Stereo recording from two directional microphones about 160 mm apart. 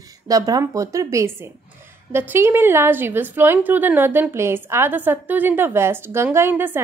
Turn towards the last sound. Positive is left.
turn(degrees=-15)  # may be behind; listen again after turning